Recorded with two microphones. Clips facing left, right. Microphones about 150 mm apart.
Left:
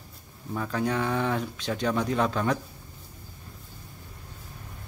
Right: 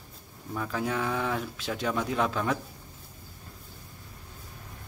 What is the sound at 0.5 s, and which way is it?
A man's voice, centre (ahead or behind).